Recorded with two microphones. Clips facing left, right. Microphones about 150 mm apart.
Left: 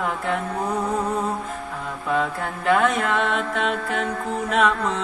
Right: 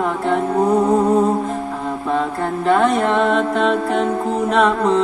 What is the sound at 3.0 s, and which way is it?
Music, 35° right (ahead or behind).